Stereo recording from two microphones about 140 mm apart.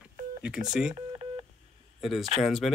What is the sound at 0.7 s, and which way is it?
Speech, 5° right (ahead or behind).